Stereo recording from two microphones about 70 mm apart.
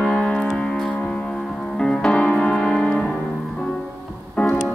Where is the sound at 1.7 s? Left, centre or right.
Centre.